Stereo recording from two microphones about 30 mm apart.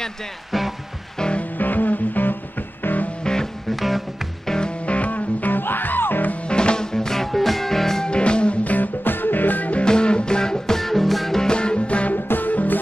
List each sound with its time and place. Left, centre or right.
0.5 s music: centre
1.4 s music: left
3.3 s music: left
3.7 s music: centre
4.5 s music: centre
4.8 s music: left
6.4 s music: left; by 7.2 s centre
7.2 s music: centre
8.0 s music: left
8.6 s music: left
9.8 s music: left
10.8 s music: centre
11.5 s music: left
12.1 s music: left